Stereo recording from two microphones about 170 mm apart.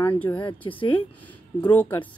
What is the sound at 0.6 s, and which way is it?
Speech, 25° left (ahead or behind).